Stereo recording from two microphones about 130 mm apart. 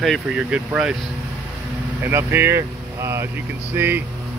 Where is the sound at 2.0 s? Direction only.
15° right (ahead or behind).